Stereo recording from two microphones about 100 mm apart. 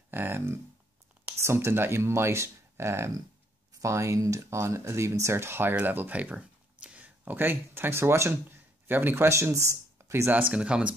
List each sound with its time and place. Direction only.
0.1 s speech: 20° right (ahead or behind)
10.5 s speech: 10° right (ahead or behind)